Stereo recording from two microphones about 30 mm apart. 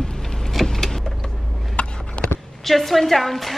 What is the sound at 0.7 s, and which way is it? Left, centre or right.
Vehicle, centre.